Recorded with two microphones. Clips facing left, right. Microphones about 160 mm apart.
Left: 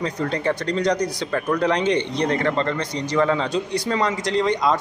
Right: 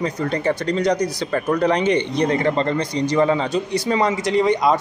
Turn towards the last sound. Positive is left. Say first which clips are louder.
# right 3 dB
turn(degrees=-5)  # may be behind; listen again after turning